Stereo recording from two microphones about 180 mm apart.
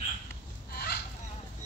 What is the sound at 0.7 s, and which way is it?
Fowl, 60° left (ahead or behind).